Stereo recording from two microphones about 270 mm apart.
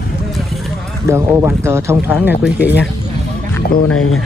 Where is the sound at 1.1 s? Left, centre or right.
Centre.